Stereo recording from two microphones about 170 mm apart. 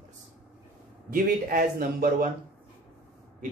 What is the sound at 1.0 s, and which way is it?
A man's voice, 55° right (ahead or behind).